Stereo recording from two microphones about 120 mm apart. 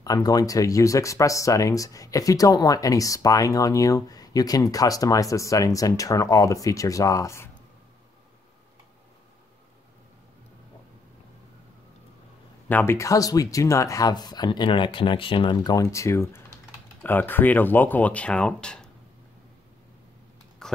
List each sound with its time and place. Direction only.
0.0 s speech: 30° left (ahead or behind)
12.6 s speech: 20° left (ahead or behind); by 15.5 s 45° left (ahead or behind)
15.5 s speech: 30° left (ahead or behind); by 18.9 s 10° left (ahead or behind)
20.6 s a sound: 5° left (ahead or behind)